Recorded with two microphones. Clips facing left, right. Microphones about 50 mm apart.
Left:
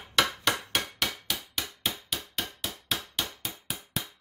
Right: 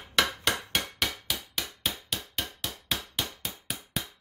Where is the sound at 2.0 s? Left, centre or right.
Centre.